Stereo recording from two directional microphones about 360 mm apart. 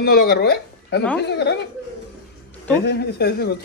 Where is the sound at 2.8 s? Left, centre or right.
Left.